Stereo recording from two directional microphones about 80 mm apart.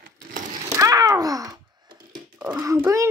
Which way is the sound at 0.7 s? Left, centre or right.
Right.